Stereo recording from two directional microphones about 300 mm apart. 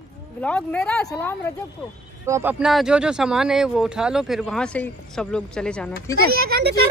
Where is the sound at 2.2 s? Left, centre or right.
Centre.